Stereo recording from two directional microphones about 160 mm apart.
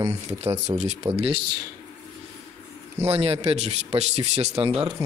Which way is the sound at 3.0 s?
40° right (ahead or behind).